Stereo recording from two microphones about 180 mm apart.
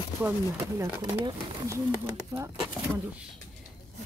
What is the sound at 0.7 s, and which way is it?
A woman's voice, 15° right (ahead or behind).